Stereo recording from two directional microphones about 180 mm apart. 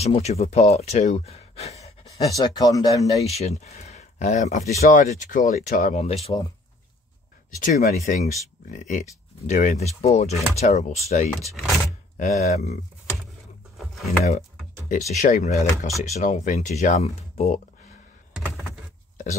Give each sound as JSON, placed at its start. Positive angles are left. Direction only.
{"t": 0.0, "sound": "speech", "side_deg": 35}
{"t": 2.3, "sound": "speech", "side_deg": 20}
{"t": 3.3, "sound": "speech", "side_deg": 35}
{"t": 7.6, "sound": "speech", "side_deg": 40}
{"t": 11.3, "sound": "speech", "side_deg": 0}
{"t": 12.2, "sound": "speech", "side_deg": 40}
{"t": 13.7, "sound": "a sound", "side_deg": 0}
{"t": 14.9, "sound": "speech", "side_deg": 40}